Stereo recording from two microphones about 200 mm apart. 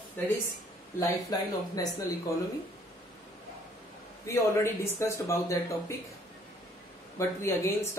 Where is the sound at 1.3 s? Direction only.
20° left (ahead or behind).